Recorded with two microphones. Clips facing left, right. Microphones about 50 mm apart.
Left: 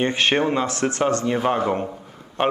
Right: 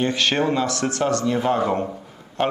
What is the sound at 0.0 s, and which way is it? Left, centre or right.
A man's voice, left.